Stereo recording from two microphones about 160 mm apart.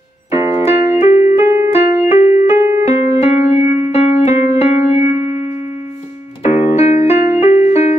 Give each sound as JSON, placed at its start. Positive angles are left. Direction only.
{"t": 0.7, "sound": "keyboard", "side_deg": 40}
{"t": 1.4, "sound": "keyboard", "side_deg": -20}
{"t": 1.7, "sound": "keyboard", "side_deg": 40}
{"t": 2.5, "sound": "keyboard", "side_deg": -20}
{"t": 2.8, "sound": "keyboard", "side_deg": 40}